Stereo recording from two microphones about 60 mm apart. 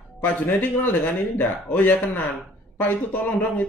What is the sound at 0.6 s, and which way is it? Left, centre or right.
Speech, left.